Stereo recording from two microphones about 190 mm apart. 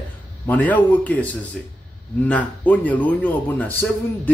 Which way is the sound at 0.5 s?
10° left (ahead or behind).